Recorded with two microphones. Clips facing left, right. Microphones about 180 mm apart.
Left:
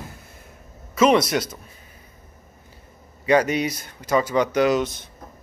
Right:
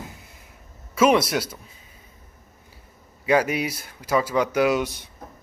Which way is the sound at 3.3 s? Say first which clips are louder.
Left 2 dB; 5° right (ahead or behind).